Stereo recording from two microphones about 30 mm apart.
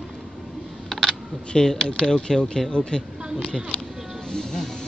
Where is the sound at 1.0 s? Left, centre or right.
Left.